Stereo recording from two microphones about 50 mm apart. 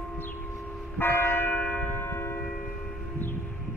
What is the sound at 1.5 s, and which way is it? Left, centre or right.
Church bell, left.